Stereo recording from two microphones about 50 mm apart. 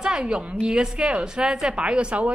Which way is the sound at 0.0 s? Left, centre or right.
Centre.